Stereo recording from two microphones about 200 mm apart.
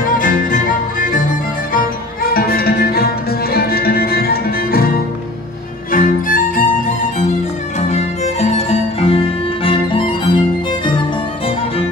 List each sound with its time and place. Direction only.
0.0 s music: 45° left (ahead or behind)
2.3 s music: 50° left (ahead or behind)
7.9 s music: 30° left (ahead or behind)